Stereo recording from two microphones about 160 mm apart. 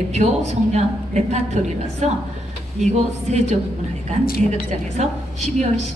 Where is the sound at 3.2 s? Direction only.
45° right (ahead or behind).